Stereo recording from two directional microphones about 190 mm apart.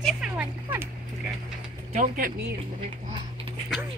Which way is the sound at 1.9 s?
50° right (ahead or behind).